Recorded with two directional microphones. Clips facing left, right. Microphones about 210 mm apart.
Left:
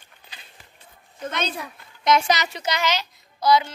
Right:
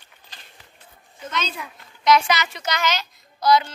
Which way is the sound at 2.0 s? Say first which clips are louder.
Right 1 dB; 45° left (ahead or behind).